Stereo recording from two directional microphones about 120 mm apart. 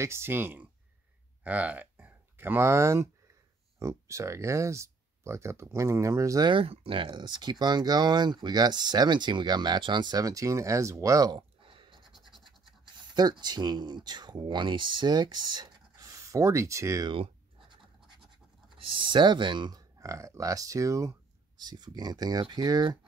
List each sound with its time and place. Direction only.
0.0 s speech: 20° right (ahead or behind)
6.4 s speech: 45° right (ahead or behind); by 11.4 s 30° right (ahead or behind)
11.6 s bleat: 45° right (ahead or behind)
12.0 s scratch: centre (ahead or behind)
12.8 s speech: 40° right (ahead or behind)
18.7 s speech: 45° right (ahead or behind)